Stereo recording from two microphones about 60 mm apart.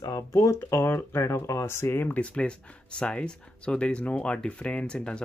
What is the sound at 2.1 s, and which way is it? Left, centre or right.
Speech, centre.